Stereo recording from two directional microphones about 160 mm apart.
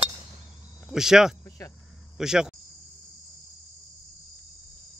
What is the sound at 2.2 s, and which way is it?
Speech, 5° right (ahead or behind).